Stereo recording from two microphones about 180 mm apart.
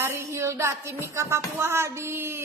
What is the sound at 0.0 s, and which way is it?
Speech, 15° right (ahead or behind).